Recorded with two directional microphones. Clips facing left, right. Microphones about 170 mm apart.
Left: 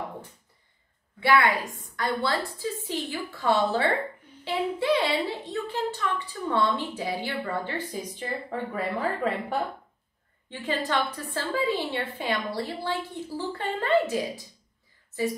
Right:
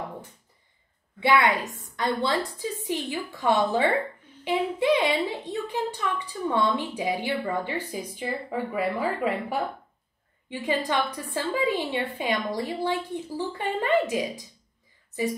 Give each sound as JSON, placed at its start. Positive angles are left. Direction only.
{"t": 1.2, "sound": "a woman's voice", "side_deg": -20}